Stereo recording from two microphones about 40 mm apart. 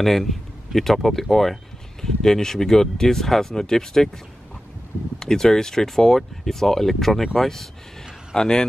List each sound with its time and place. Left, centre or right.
0.0 s speech: centre
5.2 s speech: centre
8.4 s a man's voice: centre